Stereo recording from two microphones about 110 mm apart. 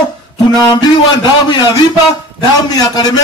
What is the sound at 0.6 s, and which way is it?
A man's voice, 40° left (ahead or behind).